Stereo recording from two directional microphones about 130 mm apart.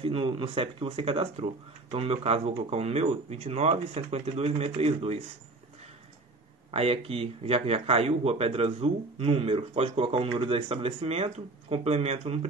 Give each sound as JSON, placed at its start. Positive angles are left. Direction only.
{"t": 0.0, "sound": "speech", "side_deg": -40}
{"t": 6.7, "sound": "speech", "side_deg": -50}